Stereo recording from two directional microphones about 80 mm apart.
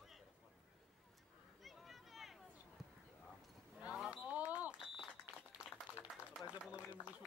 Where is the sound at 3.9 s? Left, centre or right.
Centre.